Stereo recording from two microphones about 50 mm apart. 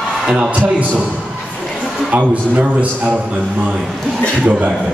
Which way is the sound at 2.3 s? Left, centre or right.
Right.